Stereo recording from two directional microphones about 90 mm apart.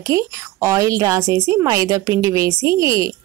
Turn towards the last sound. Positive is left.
turn(degrees=-35)  # may be behind; listen again after turning